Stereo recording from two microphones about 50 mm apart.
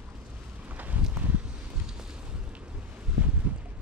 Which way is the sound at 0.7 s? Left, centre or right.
Right.